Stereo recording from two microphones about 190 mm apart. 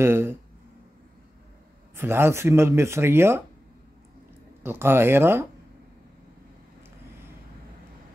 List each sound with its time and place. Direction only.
0.0 s speech: 10° right (ahead or behind)
2.0 s speech: 10° right (ahead or behind)
4.6 s speech: 10° right (ahead or behind)